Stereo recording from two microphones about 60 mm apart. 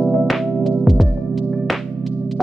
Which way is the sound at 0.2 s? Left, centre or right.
Centre.